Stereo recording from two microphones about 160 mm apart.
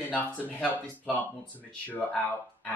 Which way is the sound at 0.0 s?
10° left (ahead or behind).